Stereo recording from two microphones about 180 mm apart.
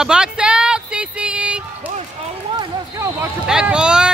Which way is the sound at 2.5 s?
20° right (ahead or behind).